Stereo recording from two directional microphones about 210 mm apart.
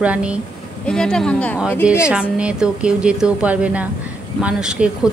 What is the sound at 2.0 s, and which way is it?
A woman's voice, 5° right (ahead or behind).